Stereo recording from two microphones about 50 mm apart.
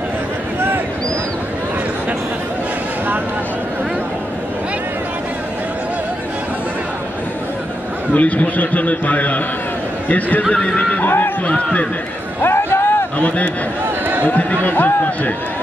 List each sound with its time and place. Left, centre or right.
8.1 s a man's voice: left
11.1 s speech: left
11.4 s a man's voice: left
12.4 s a sound: left
12.8 s a sound: left
14.2 s speech: left